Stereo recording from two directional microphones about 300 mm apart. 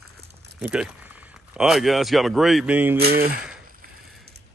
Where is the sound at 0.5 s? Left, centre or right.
Centre.